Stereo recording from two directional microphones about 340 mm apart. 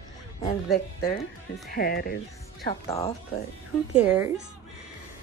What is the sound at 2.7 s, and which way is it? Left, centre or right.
Speech, centre.